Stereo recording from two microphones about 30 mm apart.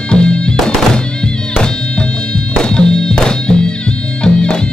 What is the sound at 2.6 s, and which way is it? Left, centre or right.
Music, left.